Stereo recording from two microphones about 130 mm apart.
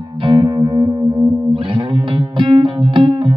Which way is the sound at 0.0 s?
40° right (ahead or behind).